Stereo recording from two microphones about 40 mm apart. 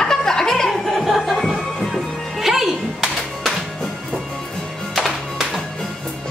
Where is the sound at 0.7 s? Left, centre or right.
Centre.